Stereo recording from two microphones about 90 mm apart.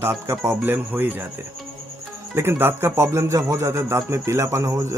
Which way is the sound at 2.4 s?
25° right (ahead or behind).